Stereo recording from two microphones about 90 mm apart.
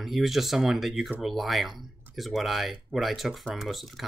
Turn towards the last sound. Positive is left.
turn(degrees=0)  # may be behind; listen again after turning